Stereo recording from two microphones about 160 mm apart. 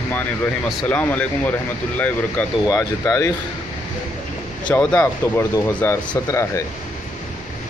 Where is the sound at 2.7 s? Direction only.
20° left (ahead or behind).